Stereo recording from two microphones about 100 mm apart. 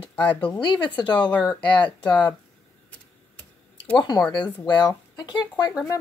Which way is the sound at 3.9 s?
45° left (ahead or behind).